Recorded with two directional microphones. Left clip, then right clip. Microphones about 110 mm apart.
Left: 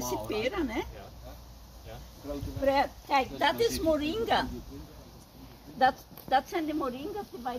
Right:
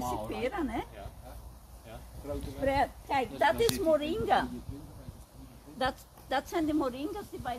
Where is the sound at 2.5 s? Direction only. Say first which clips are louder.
Left 3 dB; 20° right (ahead or behind).